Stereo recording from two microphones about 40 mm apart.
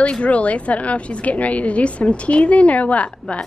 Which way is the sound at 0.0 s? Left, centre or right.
Left.